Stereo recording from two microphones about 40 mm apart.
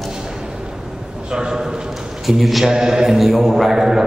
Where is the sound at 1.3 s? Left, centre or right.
Centre.